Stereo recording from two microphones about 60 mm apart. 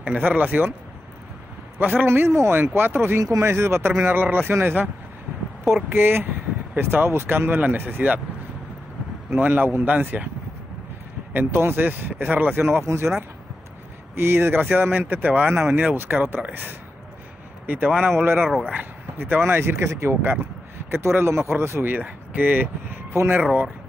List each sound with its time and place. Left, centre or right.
0.2 s a man's voice: right
1.8 s speech: right
3.2 s speech: right
3.4 s speech: right
5.9 s a man's voice: right
9.4 s a man's voice: right
11.3 s speech: right
12.8 s speech: right
14.1 s speech: right
14.6 s a man's voice: right
18.7 s speech: right
21.8 s speech: right